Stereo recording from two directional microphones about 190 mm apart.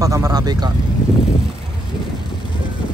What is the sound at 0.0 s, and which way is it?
Speech, 15° right (ahead or behind).